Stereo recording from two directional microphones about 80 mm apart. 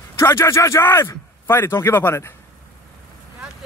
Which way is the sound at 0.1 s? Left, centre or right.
Left.